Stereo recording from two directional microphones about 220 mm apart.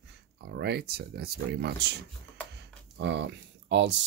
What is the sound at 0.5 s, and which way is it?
Speech, 45° right (ahead or behind).